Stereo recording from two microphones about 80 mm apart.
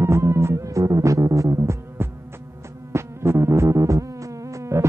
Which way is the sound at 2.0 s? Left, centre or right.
Right.